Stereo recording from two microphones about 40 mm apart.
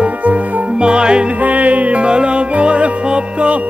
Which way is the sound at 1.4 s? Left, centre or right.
Right.